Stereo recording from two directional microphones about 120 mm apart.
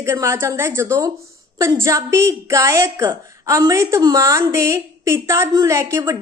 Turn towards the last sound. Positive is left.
turn(degrees=-25)  # may be behind; listen again after turning